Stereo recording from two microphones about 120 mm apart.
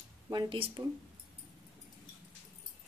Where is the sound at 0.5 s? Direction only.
45° right (ahead or behind).